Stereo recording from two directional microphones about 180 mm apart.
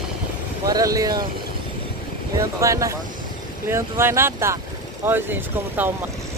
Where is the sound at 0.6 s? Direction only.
20° right (ahead or behind).